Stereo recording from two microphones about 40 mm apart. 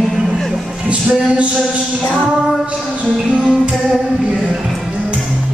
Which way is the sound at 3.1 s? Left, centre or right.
Centre.